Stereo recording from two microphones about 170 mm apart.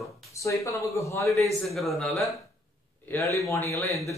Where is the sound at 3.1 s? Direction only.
15° left (ahead or behind).